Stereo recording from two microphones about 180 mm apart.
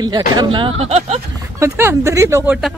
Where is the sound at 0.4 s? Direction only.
30° right (ahead or behind).